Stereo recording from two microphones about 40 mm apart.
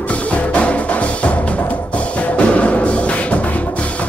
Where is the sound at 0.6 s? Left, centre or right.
Left.